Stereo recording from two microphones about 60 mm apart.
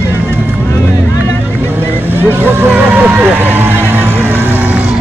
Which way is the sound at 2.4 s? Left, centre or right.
Right.